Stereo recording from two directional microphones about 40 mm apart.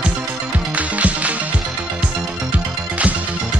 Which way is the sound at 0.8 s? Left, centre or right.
Right.